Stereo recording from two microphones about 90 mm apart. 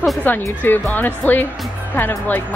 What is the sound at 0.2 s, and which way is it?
Speech, 20° left (ahead or behind).